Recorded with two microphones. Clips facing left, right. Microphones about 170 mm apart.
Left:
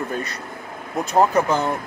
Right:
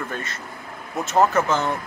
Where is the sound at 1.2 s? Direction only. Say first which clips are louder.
Left 1 dB; 15° left (ahead or behind).